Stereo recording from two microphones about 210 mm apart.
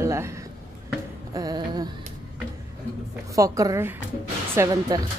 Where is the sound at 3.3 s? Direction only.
15° right (ahead or behind).